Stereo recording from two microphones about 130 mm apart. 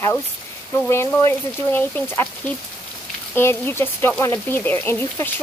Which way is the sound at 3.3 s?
15° left (ahead or behind).